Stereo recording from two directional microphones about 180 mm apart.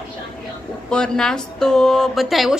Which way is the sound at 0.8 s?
5° left (ahead or behind).